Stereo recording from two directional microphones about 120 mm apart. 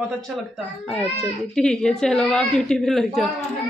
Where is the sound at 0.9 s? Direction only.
5° left (ahead or behind).